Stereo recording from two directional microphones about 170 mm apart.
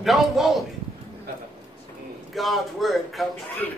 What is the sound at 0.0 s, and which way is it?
Speech, centre (ahead or behind).